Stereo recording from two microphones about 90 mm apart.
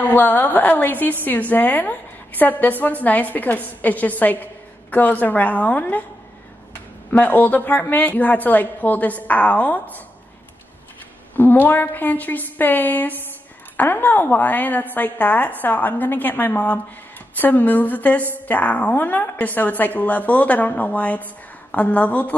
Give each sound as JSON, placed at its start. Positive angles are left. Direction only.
{"t": 0.0, "sound": "a woman's voice", "side_deg": 20}
{"t": 7.1, "sound": "a woman's voice", "side_deg": 20}
{"t": 11.3, "sound": "a woman's voice", "side_deg": 20}